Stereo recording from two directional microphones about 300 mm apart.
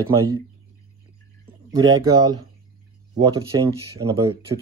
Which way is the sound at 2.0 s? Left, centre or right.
Centre.